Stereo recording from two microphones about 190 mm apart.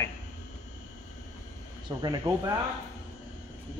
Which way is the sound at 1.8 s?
20° right (ahead or behind).